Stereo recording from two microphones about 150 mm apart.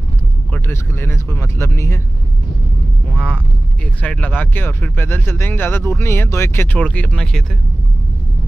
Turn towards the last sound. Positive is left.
turn(degrees=5)  # may be behind; listen again after turning